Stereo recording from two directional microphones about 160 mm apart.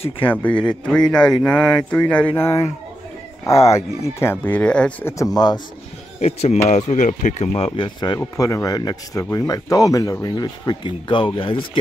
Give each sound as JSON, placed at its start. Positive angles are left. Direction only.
{"t": 0.2, "sound": "speech", "side_deg": 10}
{"t": 5.1, "sound": "speech", "side_deg": 20}
{"t": 6.1, "sound": "speech", "side_deg": 40}